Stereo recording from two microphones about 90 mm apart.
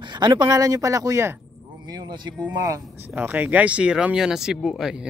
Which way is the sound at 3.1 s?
20° right (ahead or behind).